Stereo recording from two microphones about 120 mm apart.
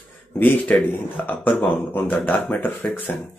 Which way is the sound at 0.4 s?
15° left (ahead or behind).